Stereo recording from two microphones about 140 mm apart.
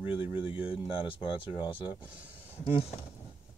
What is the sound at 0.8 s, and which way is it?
Speech, 40° left (ahead or behind).